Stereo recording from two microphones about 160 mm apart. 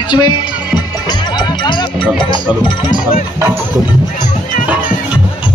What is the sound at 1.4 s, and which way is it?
Music, 30° left (ahead or behind).